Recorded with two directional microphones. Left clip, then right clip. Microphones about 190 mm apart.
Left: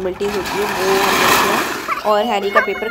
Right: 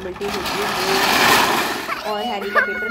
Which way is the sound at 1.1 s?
20° left (ahead or behind).